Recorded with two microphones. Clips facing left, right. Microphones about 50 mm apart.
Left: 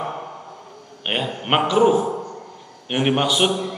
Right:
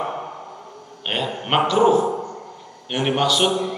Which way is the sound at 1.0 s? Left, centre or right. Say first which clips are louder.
Left 1 dB; centre.